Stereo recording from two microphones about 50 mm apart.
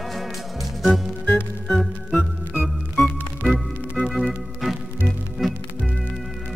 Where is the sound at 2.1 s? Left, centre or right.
Left.